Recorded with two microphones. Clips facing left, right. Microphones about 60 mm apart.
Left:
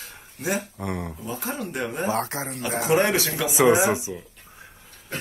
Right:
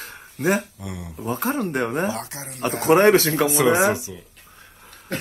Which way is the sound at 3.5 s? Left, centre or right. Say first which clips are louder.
Left 3 dB; centre.